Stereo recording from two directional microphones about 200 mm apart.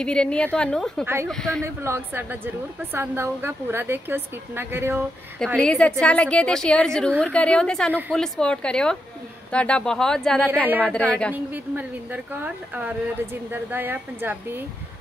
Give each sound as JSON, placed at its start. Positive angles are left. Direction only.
{"t": 0.0, "sound": "a woman's voice", "side_deg": 5}
{"t": 1.6, "sound": "a woman's voice", "side_deg": -10}
{"t": 5.6, "sound": "a woman's voice", "side_deg": 5}
{"t": 11.3, "sound": "a woman's voice", "side_deg": -10}